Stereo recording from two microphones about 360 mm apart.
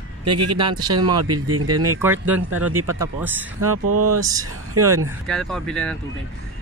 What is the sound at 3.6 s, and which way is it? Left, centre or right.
Speech, right.